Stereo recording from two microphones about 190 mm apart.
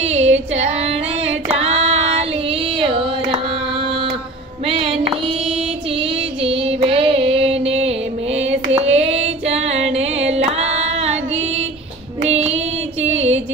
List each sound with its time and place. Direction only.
0.0 s female singing: 35° right (ahead or behind)
0.6 s child singing: 35° right (ahead or behind)
2.8 s a sound: 30° right (ahead or behind)
5.9 s music: 30° right (ahead or behind)
8.4 s female singing: 35° right (ahead or behind)
10.3 s music: 35° right (ahead or behind)
12.3 s female singing: 35° right (ahead or behind)